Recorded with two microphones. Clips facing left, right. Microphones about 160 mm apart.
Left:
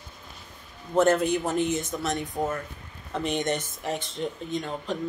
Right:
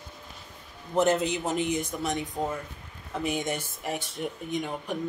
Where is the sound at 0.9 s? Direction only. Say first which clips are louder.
Left 3 dB; 15° right (ahead or behind).